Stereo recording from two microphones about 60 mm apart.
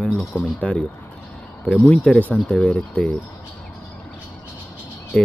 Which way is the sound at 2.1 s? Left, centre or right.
Centre.